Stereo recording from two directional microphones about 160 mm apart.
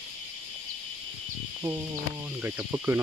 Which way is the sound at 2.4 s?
15° right (ahead or behind).